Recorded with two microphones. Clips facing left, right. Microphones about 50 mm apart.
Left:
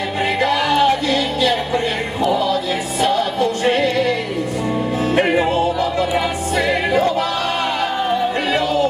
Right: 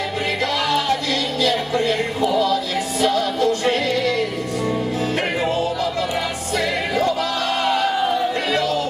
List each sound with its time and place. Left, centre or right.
0.4 s music: centre
3.0 s music: centre
5.1 s music: centre